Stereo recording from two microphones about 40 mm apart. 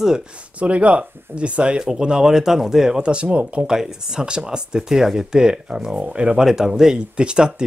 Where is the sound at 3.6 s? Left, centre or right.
Centre.